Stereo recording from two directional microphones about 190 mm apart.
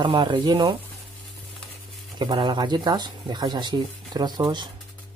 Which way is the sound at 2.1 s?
25° right (ahead or behind).